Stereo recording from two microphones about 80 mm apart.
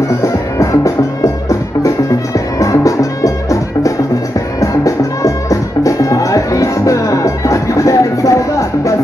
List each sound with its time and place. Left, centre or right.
0.2 s music: left